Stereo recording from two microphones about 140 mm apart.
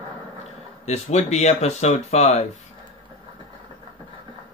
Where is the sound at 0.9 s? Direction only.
50° left (ahead or behind).